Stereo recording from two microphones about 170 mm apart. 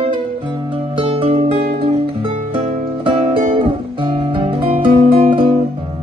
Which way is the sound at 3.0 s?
35° right (ahead or behind).